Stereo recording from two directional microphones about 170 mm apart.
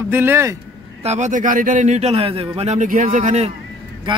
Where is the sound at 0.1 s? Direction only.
15° right (ahead or behind).